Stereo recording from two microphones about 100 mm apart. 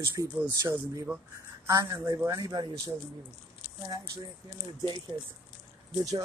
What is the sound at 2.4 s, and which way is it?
Speech, 45° right (ahead or behind).